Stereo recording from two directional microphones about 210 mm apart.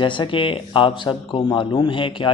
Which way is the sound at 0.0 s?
25° left (ahead or behind).